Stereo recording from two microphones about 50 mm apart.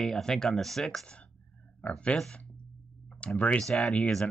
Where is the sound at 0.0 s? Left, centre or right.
Centre.